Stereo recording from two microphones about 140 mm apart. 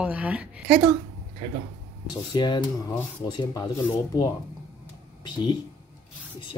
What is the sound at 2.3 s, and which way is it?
Speech, 30° left (ahead or behind).